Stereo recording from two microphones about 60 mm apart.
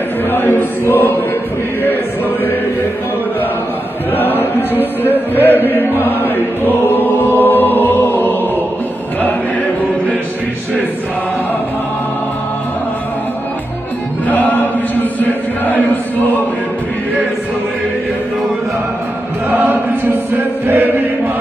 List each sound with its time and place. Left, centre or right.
0.3 s choir: left
4.4 s chant: left
14.2 s chant: left
19.5 s choir: right